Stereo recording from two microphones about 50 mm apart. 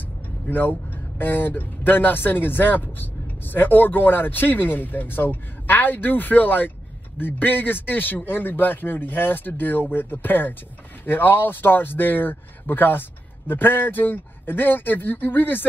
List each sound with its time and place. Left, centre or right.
0.5 s speech: left